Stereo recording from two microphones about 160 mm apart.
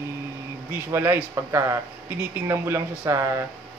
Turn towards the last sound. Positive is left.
turn(degrees=-15)  # may be behind; listen again after turning